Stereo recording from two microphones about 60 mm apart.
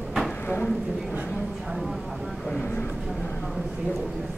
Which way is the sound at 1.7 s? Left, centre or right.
Centre.